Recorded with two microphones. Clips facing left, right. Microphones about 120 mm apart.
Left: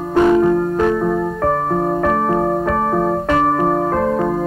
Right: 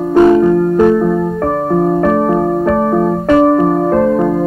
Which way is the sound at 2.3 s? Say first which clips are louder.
Right 3 dB; 5° right (ahead or behind).